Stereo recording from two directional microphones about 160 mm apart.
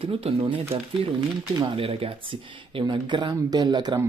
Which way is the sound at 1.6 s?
35° right (ahead or behind).